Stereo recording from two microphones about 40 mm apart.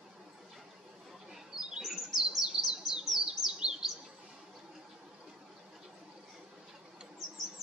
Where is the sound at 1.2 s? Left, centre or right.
Centre.